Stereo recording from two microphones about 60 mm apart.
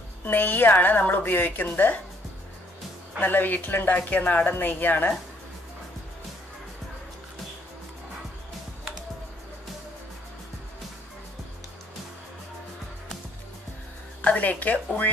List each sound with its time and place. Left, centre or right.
0.2 s a woman's voice: left
3.2 s a woman's voice: left
14.2 s a woman's voice: left